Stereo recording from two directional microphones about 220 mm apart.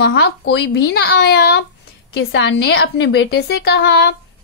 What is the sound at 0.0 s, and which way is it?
A woman's voice, 50° left (ahead or behind).